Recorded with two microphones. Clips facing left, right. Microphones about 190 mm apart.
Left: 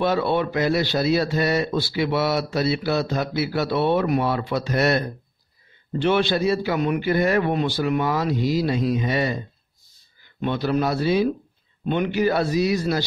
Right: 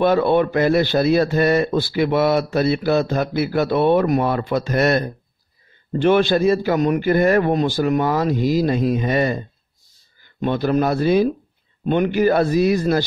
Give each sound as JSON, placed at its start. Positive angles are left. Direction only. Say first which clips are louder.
{"t": 0.0, "sound": "a man's voice", "louder": "right 5 dB", "side_deg": -50}
{"t": 10.4, "sound": "a man's voice", "louder": "right 4 dB", "side_deg": -45}